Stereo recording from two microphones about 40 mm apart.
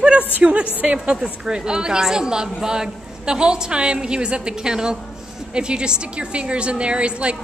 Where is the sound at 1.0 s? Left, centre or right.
Right.